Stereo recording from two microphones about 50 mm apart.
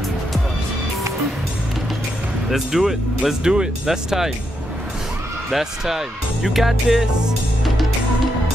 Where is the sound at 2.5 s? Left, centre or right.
Centre.